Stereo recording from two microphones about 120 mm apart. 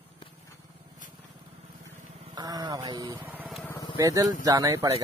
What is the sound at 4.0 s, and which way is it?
Speech, 30° right (ahead or behind).